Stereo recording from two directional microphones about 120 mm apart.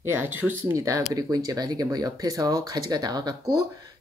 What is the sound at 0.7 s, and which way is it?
Speech, 25° right (ahead or behind).